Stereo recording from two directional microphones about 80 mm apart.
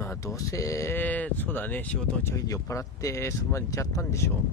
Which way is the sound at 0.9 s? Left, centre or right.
Left.